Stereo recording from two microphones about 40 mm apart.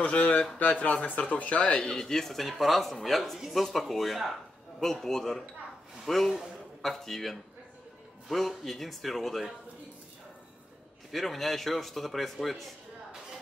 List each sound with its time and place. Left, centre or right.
0.0 s speech: left
1.9 s speech: centre
11.1 s speech: centre